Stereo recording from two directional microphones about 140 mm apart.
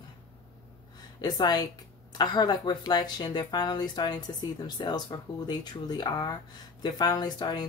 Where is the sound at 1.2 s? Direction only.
30° left (ahead or behind).